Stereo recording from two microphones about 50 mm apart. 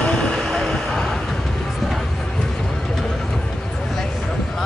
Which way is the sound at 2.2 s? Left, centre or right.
Centre.